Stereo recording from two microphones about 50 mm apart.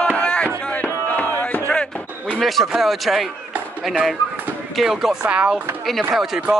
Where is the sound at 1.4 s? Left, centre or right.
Left.